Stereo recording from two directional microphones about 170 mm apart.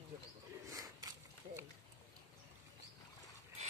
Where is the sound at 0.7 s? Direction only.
20° right (ahead or behind).